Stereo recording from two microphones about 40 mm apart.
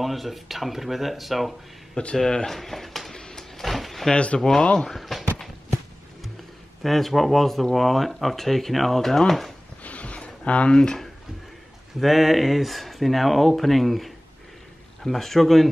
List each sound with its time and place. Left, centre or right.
0.0 s speech: centre
2.1 s speech: centre
3.2 s a sound: centre
4.1 s speech: left
4.4 s speech: centre
6.8 s speech: centre
9.8 s a sound: left
10.7 s speech: left
12.0 s speech: centre